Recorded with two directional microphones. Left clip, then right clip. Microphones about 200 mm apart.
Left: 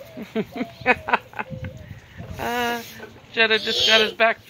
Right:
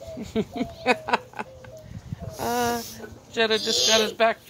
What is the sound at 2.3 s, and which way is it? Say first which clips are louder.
Snake: left 1 dB; 15° left (ahead or behind).